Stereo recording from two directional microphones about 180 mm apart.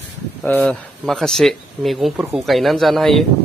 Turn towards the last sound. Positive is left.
turn(degrees=0)  # may be behind; listen again after turning